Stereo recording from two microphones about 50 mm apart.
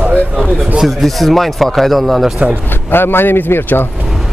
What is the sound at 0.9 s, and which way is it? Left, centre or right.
Speech, centre.